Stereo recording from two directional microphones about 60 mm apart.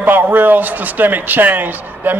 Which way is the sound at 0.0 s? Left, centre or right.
Right.